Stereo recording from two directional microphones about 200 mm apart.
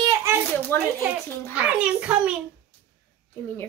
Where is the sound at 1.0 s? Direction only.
5° right (ahead or behind).